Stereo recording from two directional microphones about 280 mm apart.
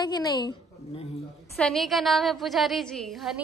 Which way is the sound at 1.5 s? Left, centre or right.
Centre.